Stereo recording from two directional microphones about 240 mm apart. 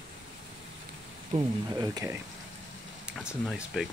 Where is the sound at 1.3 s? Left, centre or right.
Centre.